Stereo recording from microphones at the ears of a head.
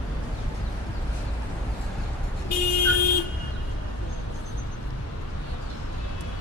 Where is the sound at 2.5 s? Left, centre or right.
Left.